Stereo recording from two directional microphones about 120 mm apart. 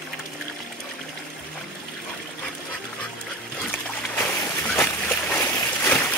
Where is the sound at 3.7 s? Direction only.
20° left (ahead or behind).